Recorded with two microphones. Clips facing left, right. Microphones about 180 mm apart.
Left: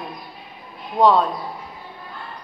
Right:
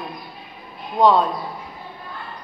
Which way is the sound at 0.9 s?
5° left (ahead or behind).